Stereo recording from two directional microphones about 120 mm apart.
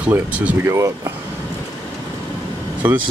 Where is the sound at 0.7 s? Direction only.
25° right (ahead or behind).